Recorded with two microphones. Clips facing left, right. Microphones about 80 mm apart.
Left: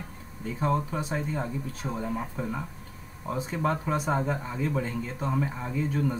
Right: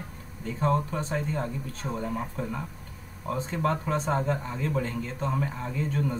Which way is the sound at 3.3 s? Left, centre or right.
Centre.